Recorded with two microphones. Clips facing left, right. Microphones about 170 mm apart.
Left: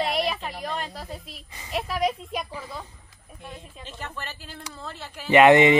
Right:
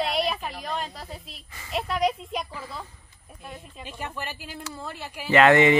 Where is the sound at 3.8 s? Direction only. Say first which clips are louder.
Right 3 dB; 10° right (ahead or behind).